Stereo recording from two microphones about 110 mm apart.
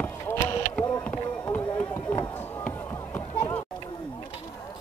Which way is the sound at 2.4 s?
15° left (ahead or behind).